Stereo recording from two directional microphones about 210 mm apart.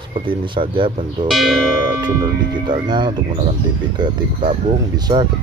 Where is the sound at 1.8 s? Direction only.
20° right (ahead or behind).